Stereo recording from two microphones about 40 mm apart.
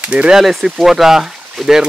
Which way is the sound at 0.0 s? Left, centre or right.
Right.